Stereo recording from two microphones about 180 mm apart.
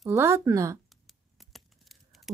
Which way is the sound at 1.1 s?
Centre (ahead or behind).